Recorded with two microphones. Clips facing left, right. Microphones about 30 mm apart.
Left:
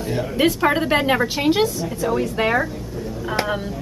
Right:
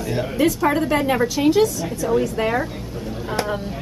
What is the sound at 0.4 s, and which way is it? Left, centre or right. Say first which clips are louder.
A woman's voice: left 1 dB; left.